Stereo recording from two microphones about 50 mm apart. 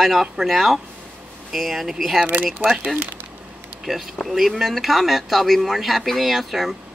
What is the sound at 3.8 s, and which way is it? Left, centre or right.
Speech, centre.